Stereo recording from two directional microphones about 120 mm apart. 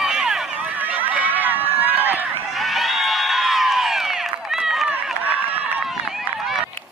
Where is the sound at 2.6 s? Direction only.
Centre (ahead or behind).